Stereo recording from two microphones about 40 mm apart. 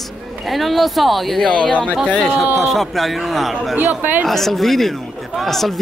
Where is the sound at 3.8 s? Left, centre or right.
Right.